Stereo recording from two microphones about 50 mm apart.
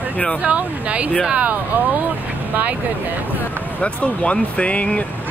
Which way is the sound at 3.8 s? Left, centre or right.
Left.